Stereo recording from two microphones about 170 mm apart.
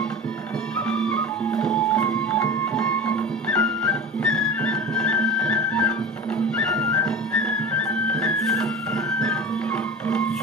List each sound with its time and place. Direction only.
0.8 s music: 5° left (ahead or behind)